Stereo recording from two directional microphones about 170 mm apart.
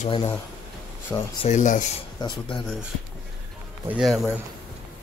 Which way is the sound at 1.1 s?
10° left (ahead or behind).